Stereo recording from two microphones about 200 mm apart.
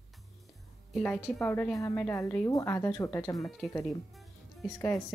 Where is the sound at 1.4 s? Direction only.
15° left (ahead or behind).